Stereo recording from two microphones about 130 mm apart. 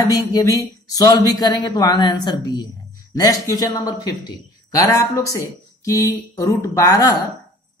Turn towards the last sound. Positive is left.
turn(degrees=25)  # may be behind; listen again after turning